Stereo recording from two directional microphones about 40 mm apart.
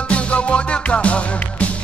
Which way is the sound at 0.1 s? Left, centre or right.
Left.